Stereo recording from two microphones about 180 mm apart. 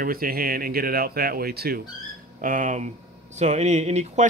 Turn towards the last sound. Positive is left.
turn(degrees=-40)  # may be behind; listen again after turning